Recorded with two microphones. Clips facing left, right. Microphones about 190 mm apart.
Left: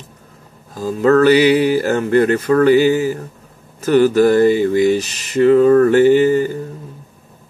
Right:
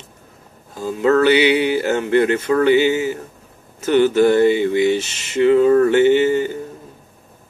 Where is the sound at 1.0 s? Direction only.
45° left (ahead or behind).